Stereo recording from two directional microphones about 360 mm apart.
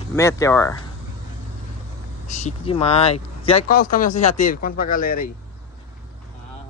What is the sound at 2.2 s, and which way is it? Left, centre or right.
Speech, centre.